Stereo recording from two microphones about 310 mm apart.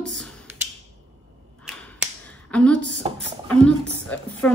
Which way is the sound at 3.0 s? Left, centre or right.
Centre.